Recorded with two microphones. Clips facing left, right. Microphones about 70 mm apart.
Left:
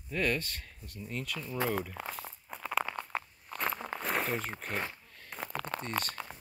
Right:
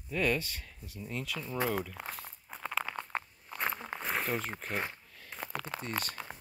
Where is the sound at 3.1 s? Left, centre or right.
Right.